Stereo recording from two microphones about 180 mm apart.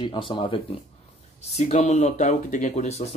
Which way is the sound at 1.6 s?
40° left (ahead or behind).